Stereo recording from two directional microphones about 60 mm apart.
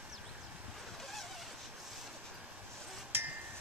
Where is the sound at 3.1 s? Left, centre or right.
Right.